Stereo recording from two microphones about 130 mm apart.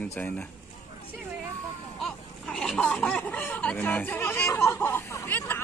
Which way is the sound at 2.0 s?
Centre (ahead or behind).